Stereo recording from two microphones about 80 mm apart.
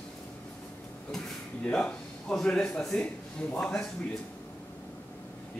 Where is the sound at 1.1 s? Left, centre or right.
Centre.